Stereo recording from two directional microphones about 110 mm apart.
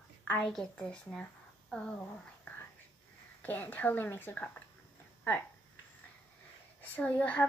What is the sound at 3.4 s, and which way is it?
Speech, 15° left (ahead or behind).